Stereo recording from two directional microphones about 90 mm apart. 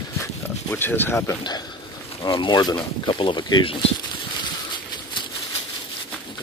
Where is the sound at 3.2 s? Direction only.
60° left (ahead or behind).